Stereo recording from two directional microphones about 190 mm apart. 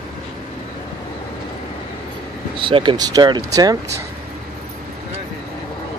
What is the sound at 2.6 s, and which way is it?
Speech, 25° right (ahead or behind).